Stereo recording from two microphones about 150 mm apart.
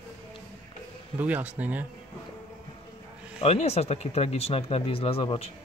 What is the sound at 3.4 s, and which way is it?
Speech, 45° left (ahead or behind).